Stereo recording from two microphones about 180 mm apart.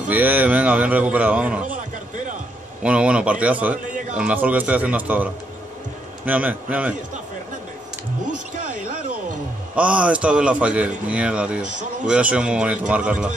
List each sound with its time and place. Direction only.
0.1 s a man's voice: 10° right (ahead or behind)
2.8 s a man's voice: 5° right (ahead or behind)
9.8 s a man's voice: 5° right (ahead or behind)